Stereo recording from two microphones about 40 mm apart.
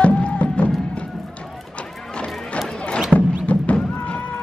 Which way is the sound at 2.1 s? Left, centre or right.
Left.